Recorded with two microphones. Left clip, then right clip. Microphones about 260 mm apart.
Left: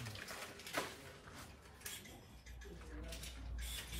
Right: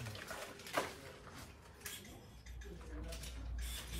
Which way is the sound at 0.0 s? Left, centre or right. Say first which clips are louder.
Right 1 dB; centre.